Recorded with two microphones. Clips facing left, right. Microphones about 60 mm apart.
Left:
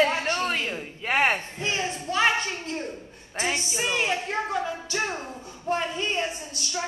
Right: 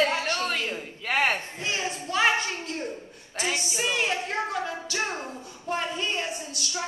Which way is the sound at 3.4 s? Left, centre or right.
Left.